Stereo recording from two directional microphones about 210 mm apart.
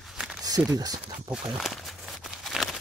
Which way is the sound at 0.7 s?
15° right (ahead or behind).